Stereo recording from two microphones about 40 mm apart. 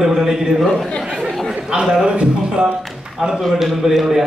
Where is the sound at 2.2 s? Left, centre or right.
Centre.